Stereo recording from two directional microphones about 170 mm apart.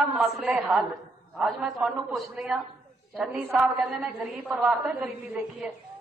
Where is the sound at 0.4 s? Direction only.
Centre (ahead or behind).